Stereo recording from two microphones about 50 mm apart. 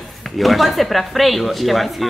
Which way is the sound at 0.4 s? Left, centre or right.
Centre.